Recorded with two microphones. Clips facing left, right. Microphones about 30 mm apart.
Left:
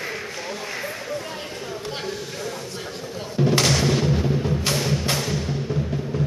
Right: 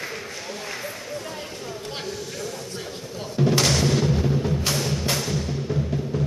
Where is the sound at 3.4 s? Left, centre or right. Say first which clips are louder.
Left 1 dB; centre.